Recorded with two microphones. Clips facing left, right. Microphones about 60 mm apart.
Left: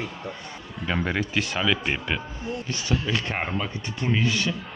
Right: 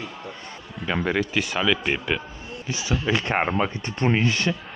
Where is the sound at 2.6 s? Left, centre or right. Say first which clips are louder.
Right 4 dB; centre.